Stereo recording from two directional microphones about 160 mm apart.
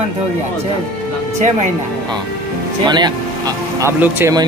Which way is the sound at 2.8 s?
25° right (ahead or behind).